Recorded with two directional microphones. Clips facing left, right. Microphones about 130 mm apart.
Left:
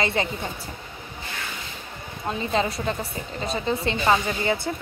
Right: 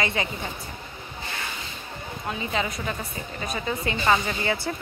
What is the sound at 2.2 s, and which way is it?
A woman's voice, 35° left (ahead or behind).